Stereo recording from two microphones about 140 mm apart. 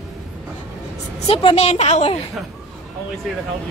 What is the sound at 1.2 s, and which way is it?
Speech, 45° left (ahead or behind).